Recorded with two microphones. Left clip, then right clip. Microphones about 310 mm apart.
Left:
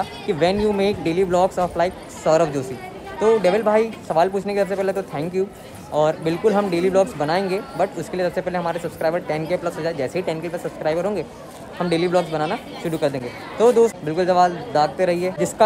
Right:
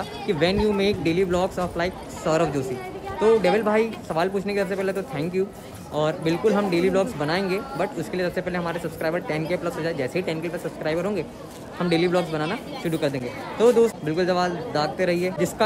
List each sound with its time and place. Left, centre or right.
0.3 s speech: centre